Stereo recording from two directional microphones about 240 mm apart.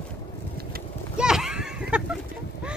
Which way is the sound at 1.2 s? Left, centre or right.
Centre.